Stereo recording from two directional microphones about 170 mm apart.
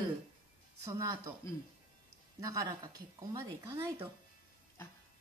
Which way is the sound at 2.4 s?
20° right (ahead or behind).